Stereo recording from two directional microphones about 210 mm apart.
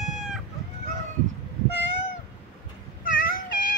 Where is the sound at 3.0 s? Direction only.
40° left (ahead or behind).